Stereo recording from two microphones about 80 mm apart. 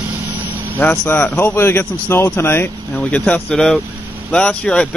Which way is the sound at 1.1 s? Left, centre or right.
Left.